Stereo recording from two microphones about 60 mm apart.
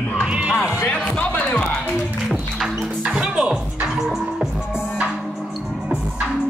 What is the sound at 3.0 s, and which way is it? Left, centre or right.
Music, centre.